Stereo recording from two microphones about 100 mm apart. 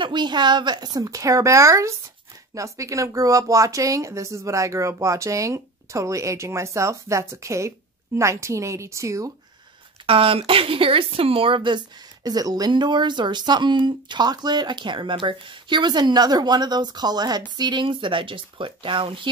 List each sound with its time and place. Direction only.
0.0 s speech: 50° right (ahead or behind); by 9.3 s 30° right (ahead or behind)
10.0 s speech: 65° right (ahead or behind)